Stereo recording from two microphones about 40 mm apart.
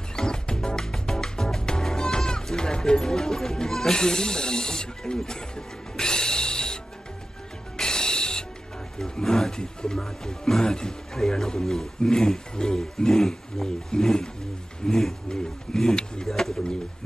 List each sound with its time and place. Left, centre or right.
0.1 s music: centre
8.9 s speech: centre
12.0 s a sound: centre
14.9 s a sound: centre
15.2 s roaring cats: centre
16.3 s pigeon: centre